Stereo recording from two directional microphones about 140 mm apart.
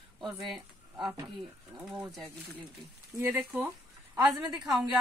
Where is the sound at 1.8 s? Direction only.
10° right (ahead or behind).